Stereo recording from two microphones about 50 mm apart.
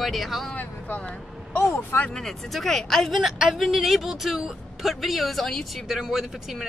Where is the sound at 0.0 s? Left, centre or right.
Centre.